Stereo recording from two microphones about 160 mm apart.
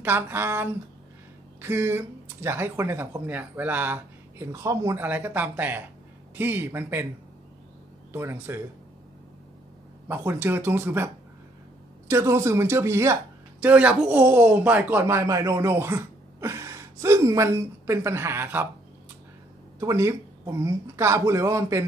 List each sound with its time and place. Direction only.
0.0 s speech: 15° right (ahead or behind)
8.1 s speech: 15° right (ahead or behind)
10.0 s speech: 15° right (ahead or behind)
12.1 s speech: 15° right (ahead or behind)
19.8 s speech: 20° right (ahead or behind)